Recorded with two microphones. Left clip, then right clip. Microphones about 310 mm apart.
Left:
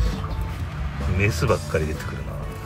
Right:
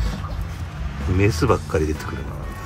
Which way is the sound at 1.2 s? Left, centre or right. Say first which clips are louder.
Right 3 dB; right.